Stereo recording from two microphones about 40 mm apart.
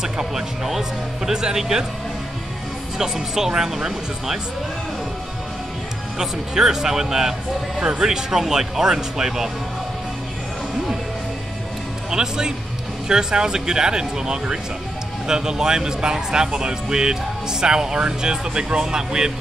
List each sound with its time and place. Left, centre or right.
0.0 s speech: centre
3.0 s speech: centre
6.1 s speech: centre
12.1 s speech: centre